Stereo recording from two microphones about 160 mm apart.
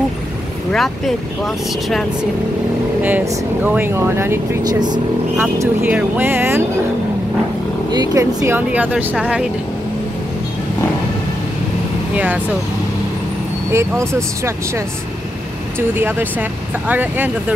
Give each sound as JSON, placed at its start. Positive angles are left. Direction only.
{"t": 0.7, "sound": "speech", "side_deg": 0}
{"t": 3.0, "sound": "speech", "side_deg": -10}
{"t": 5.4, "sound": "speech", "side_deg": -10}
{"t": 7.9, "sound": "speech", "side_deg": -25}
{"t": 8.5, "sound": "speech", "side_deg": -10}
{"t": 12.1, "sound": "speech", "side_deg": -10}
{"t": 13.7, "sound": "speech", "side_deg": -15}
{"t": 15.9, "sound": "speech", "side_deg": -10}